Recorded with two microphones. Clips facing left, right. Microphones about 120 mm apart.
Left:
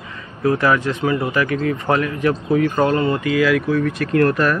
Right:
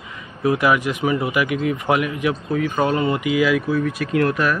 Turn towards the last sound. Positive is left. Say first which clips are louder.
# left 3 dB
turn(degrees=-5)  # may be behind; listen again after turning